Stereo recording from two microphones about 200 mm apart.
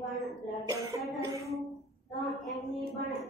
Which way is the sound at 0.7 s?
15° right (ahead or behind).